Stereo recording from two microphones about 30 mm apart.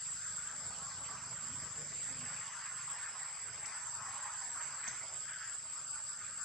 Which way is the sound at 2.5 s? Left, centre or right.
Centre.